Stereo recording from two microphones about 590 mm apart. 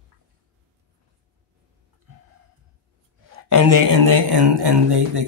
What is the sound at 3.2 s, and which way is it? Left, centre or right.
A man's voice, right.